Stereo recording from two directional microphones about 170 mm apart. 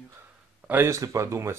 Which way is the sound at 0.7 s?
15° right (ahead or behind).